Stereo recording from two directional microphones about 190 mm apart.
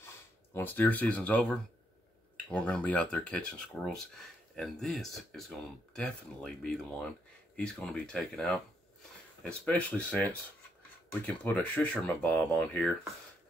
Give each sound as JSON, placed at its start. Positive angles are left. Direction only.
{"t": 0.0, "sound": "speech", "side_deg": 10}